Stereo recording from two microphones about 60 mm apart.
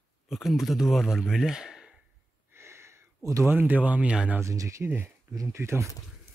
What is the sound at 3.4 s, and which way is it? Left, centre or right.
Speech, right.